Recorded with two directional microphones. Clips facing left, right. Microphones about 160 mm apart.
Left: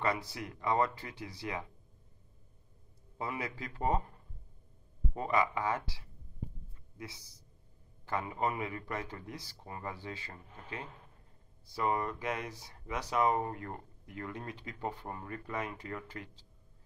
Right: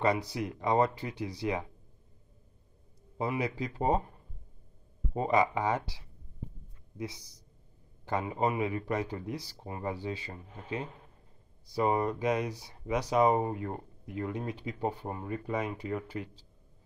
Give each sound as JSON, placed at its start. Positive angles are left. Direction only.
{"t": 0.0, "sound": "speech", "side_deg": -15}
{"t": 3.2, "sound": "speech", "side_deg": -20}
{"t": 5.1, "sound": "speech", "side_deg": -20}
{"t": 7.0, "sound": "speech", "side_deg": -15}